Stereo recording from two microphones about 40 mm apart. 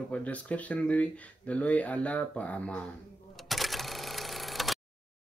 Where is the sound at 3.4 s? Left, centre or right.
Centre.